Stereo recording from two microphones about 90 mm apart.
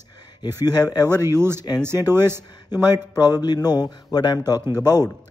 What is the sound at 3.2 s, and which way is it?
Speech, 50° left (ahead or behind).